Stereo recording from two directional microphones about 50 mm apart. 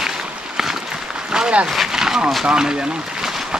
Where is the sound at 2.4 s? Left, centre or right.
Centre.